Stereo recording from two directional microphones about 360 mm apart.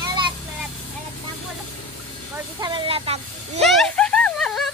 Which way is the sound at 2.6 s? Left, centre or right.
Centre.